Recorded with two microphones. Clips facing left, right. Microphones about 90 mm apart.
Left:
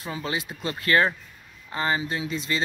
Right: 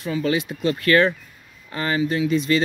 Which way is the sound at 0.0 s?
30° left (ahead or behind).